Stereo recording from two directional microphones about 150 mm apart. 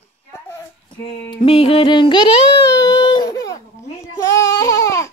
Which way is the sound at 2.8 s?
25° left (ahead or behind).